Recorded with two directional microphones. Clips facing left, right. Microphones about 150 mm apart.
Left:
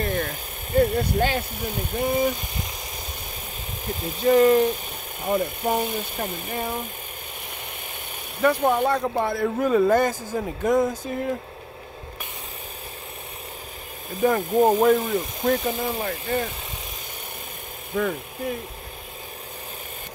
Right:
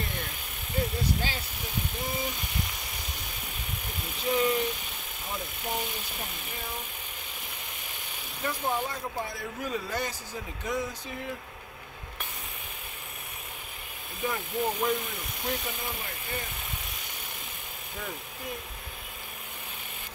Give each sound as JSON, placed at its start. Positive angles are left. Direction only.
{"t": 0.0, "sound": "a sound", "side_deg": 50}
{"t": 0.7, "sound": "speech", "side_deg": 55}
{"t": 4.3, "sound": "speech", "side_deg": 50}
{"t": 8.4, "sound": "speech", "side_deg": 70}
{"t": 14.2, "sound": "speech", "side_deg": 45}
{"t": 17.9, "sound": "speech", "side_deg": 60}